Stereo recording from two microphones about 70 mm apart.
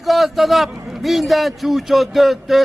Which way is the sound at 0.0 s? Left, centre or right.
Centre.